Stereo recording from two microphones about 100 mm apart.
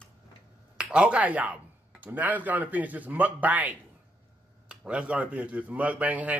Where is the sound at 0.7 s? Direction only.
10° right (ahead or behind).